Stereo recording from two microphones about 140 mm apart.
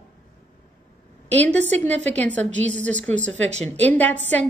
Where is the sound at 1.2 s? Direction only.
10° left (ahead or behind).